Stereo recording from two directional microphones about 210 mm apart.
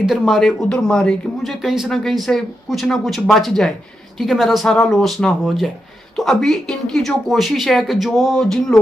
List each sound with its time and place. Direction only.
0.0 s speech: centre (ahead or behind)